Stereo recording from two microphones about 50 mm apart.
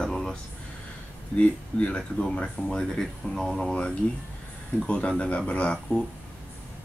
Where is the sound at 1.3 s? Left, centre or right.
Left.